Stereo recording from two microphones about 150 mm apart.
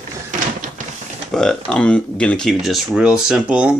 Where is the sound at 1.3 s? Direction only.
5° left (ahead or behind).